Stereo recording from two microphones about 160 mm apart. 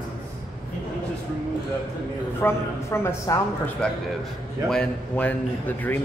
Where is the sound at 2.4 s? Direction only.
15° left (ahead or behind).